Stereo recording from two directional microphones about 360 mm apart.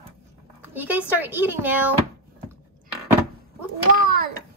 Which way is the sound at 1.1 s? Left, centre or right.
Centre.